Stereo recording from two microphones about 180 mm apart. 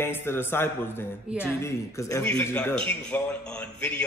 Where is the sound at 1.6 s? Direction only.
15° left (ahead or behind).